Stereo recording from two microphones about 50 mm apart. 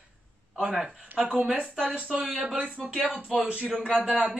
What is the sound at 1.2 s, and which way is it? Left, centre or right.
A man's voice, right.